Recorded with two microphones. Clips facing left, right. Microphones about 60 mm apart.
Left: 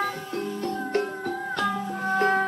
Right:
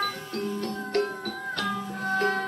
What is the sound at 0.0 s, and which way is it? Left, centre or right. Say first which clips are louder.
Music: left 2 dB; centre.